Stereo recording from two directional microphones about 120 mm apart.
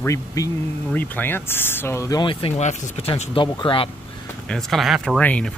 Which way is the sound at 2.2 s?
45° left (ahead or behind).